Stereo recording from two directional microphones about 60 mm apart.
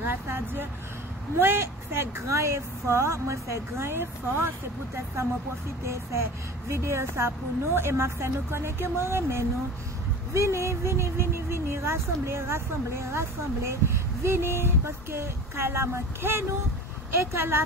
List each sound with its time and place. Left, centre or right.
0.0 s speech: right
6.7 s speech: right